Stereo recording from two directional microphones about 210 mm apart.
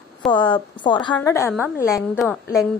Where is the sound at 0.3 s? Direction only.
20° left (ahead or behind).